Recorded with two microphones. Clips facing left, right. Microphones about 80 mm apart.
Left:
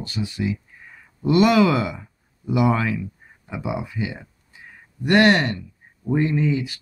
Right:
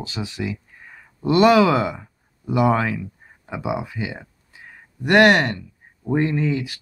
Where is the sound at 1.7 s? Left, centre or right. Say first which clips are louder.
Right 2 dB; right.